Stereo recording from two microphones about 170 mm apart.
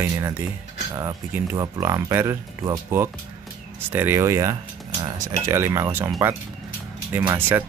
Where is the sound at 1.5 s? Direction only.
20° right (ahead or behind).